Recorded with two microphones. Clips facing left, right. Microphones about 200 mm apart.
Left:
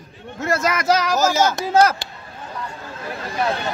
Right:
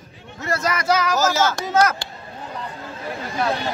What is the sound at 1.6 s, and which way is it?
Speech, 30° left (ahead or behind).